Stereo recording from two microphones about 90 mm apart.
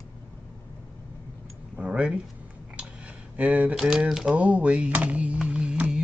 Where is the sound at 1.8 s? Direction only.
15° right (ahead or behind).